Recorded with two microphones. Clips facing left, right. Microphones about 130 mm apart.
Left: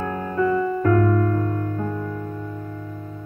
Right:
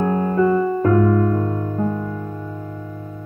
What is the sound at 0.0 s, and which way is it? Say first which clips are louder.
Music: right 5 dB; 30° right (ahead or behind).